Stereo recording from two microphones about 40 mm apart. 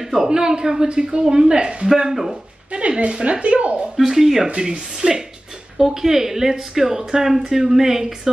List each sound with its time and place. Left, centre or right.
0.3 s speech: centre
1.9 s speech: centre
2.7 s speech: right
3.9 s speech: centre